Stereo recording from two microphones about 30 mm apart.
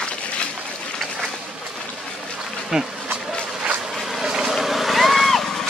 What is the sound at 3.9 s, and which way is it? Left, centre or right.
Vehicle, centre.